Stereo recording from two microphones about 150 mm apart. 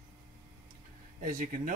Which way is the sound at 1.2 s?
65° right (ahead or behind).